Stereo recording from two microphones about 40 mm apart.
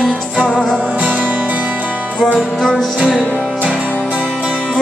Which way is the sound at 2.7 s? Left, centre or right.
Right.